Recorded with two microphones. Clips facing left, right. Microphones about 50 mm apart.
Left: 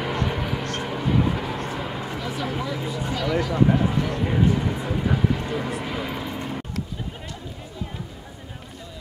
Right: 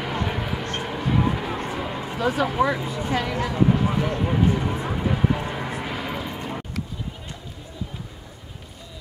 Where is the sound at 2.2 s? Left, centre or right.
Right.